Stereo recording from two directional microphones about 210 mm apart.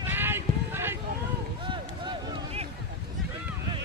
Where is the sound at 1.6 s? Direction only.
20° right (ahead or behind).